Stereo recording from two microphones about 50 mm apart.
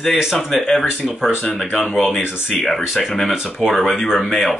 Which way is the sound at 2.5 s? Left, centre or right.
Centre.